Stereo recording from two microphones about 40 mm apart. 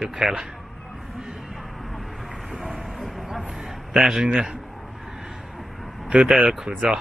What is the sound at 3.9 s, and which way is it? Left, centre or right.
Speech, centre.